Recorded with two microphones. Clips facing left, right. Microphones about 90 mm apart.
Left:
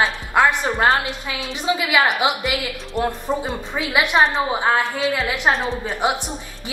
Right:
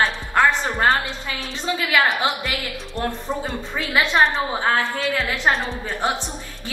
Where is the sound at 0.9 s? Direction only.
15° left (ahead or behind).